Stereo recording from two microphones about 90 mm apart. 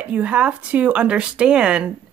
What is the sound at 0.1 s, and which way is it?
Speech, 15° right (ahead or behind).